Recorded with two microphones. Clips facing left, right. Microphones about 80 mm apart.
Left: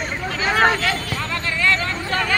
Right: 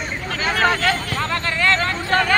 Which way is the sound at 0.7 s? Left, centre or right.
Right.